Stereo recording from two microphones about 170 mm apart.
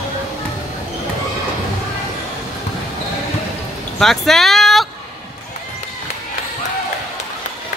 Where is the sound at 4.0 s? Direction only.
Centre (ahead or behind).